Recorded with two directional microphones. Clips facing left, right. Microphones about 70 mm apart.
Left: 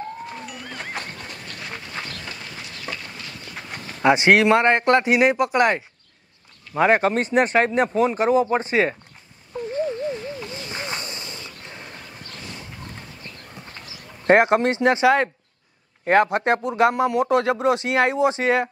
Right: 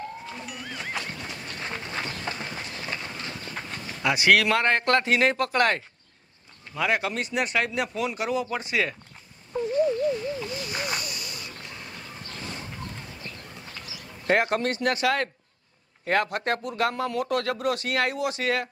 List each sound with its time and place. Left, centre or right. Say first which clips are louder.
0.5 s music: left 1 dB; centre
1.0 s horse: left 1 dB; left
2.0 s train: right 2 dB; right
4.0 s speech: left 5 dB; left
6.7 s speech: left 8 dB; left
9.7 s a sound: right 2 dB; left
13.7 s a sound: left 1 dB; left
16.1 s speech: left 7 dB; left